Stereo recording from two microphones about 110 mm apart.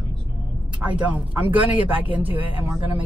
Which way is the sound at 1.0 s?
15° right (ahead or behind).